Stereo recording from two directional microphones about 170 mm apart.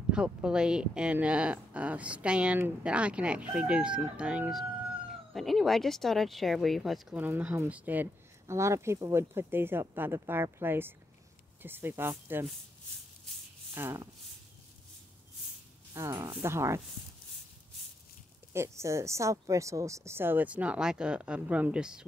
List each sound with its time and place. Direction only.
0.1 s speech: 5° right (ahead or behind)
13.7 s speech: 15° right (ahead or behind)
15.9 s speech: 20° right (ahead or behind)
18.5 s speech: 15° right (ahead or behind)